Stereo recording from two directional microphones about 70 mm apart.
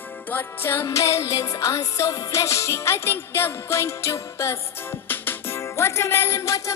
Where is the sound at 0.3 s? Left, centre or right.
Left.